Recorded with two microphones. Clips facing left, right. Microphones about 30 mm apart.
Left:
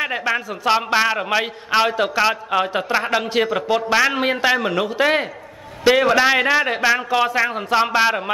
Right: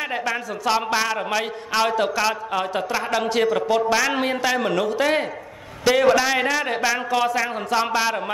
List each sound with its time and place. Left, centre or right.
0.0 s a man's voice: centre